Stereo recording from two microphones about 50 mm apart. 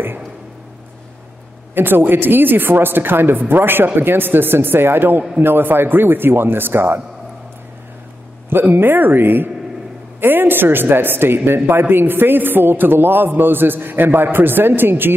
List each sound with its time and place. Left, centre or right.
1.8 s speech: right
8.7 s speech: right